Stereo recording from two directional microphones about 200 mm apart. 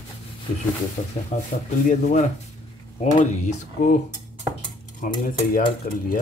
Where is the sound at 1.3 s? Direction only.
35° left (ahead or behind).